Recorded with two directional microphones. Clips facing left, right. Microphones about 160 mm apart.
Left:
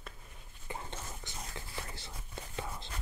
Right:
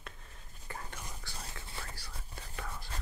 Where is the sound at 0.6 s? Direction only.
20° left (ahead or behind).